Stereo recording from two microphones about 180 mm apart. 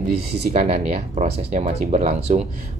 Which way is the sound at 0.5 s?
35° right (ahead or behind).